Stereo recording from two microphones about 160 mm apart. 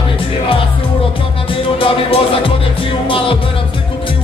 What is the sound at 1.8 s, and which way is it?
Music, 35° left (ahead or behind).